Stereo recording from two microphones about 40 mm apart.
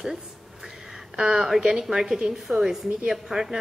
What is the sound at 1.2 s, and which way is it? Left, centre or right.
A woman's voice, centre.